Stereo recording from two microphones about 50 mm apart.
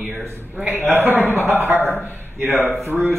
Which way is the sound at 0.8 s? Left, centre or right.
Right.